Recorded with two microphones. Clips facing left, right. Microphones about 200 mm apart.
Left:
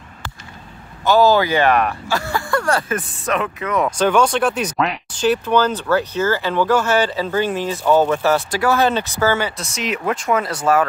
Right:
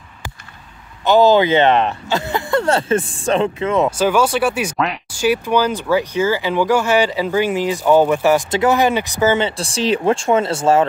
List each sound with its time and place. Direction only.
1.0 s speech: 20° right (ahead or behind)
3.9 s speech: 5° right (ahead or behind)
9.6 s speech: 30° right (ahead or behind)